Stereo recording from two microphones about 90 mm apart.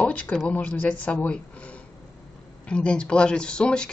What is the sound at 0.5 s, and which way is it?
Speech, 20° left (ahead or behind).